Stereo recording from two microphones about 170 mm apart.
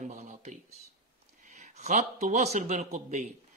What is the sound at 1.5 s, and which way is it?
A man's voice, 45° right (ahead or behind).